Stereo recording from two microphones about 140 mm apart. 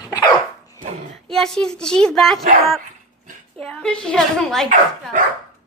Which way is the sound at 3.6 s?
5° left (ahead or behind).